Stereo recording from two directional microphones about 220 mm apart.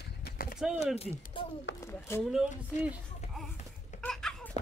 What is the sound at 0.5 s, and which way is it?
Speech, 5° right (ahead or behind).